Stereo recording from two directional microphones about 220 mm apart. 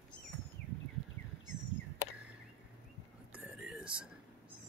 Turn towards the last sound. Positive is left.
turn(degrees=-5)  # may be behind; listen again after turning